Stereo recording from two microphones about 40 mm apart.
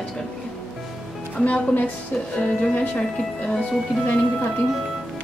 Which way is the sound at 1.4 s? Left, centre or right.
Left.